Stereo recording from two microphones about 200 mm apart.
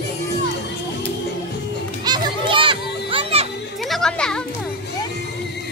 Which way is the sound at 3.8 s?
Centre (ahead or behind).